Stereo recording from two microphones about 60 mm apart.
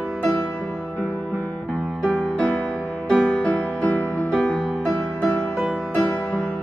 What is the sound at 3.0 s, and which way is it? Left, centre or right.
Music, left.